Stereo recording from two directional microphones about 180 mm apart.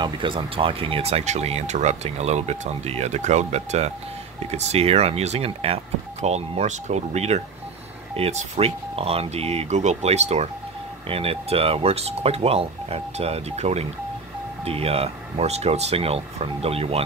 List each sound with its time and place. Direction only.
0.0 s speech: 30° right (ahead or behind)